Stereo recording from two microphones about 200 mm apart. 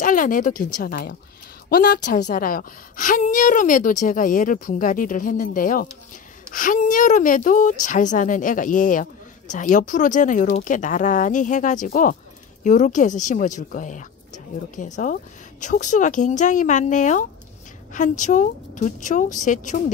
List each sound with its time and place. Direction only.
0.0 s a woman's voice: 40° left (ahead or behind)